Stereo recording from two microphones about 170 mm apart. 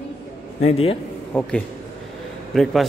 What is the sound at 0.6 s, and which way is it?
Speech, 35° left (ahead or behind).